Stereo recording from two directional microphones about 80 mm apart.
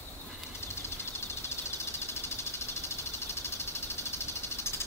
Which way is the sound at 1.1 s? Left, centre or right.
Left.